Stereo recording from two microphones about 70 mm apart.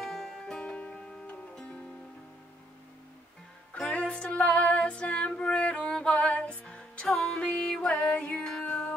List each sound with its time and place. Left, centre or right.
0.0 s music: centre
3.7 s music: centre